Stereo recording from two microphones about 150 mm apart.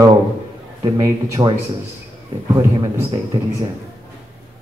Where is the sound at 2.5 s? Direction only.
25° right (ahead or behind).